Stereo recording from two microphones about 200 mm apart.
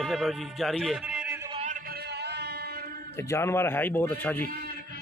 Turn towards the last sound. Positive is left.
turn(degrees=10)  # may be behind; listen again after turning